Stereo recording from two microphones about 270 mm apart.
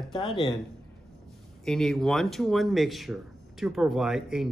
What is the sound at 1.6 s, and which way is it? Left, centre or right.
Speech, centre.